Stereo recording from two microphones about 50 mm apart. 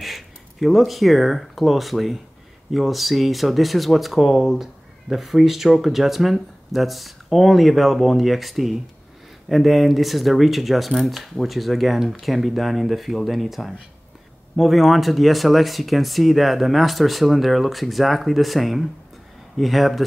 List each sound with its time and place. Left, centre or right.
0.0 s speech: centre